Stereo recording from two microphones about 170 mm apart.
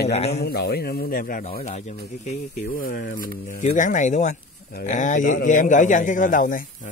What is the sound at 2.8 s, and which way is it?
A man's voice, 60° left (ahead or behind).